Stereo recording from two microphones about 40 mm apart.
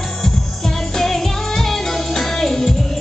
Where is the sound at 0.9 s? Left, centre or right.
Centre.